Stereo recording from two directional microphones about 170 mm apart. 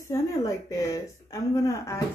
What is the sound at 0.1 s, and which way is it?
A woman's voice, 20° left (ahead or behind).